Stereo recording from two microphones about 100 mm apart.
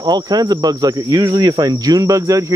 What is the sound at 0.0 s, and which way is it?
Cricket, 40° right (ahead or behind).